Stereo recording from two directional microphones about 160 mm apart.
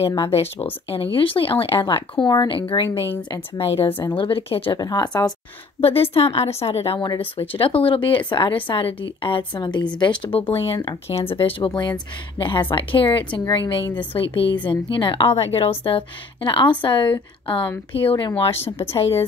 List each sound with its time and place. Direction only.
0.0 s speech: 35° left (ahead or behind)
5.8 s speech: 35° left (ahead or behind)
18.6 s a woman's voice: 15° left (ahead or behind)